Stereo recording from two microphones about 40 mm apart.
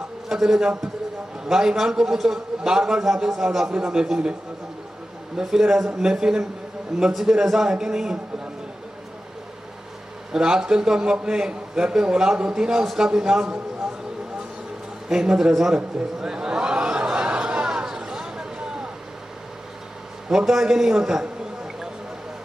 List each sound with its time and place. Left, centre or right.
0.3 s a man's voice: centre
5.4 s a man's voice: centre
10.3 s a man's voice: centre
15.0 s a man's voice: centre
16.2 s a sound: centre
20.2 s a man's voice: centre